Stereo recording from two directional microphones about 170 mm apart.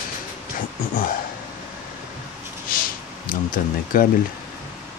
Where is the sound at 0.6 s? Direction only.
55° left (ahead or behind).